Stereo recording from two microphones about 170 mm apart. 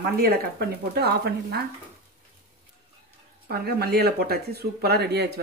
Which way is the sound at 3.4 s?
65° right (ahead or behind).